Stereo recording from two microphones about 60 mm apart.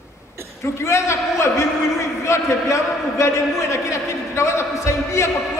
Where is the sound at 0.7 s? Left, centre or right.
Left.